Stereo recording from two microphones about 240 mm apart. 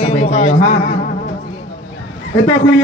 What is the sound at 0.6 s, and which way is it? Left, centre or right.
Speech, left.